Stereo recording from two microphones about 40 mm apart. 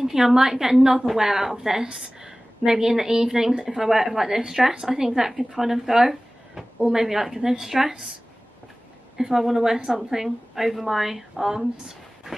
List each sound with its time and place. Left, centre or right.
0.0 s speech: centre
9.1 s a woman's voice: centre